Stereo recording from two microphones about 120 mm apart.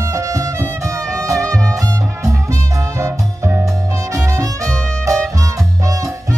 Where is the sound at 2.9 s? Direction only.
25° right (ahead or behind).